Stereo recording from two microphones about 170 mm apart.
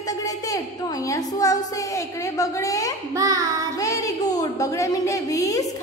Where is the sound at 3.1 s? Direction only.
20° right (ahead or behind).